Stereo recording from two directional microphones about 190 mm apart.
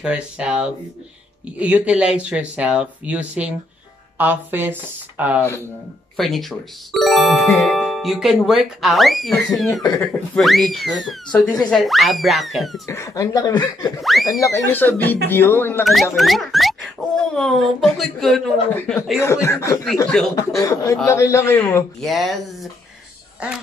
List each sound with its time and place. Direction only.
0.0 s speech: 5° right (ahead or behind)
12.8 s a man's voice: 15° left (ahead or behind)
14.0 s speech: centre (ahead or behind)
14.4 s a man's voice: 10° left (ahead or behind)
15.8 s speech: centre (ahead or behind)
19.1 s a man's voice: 15° left (ahead or behind)
22.0 s speech: centre (ahead or behind)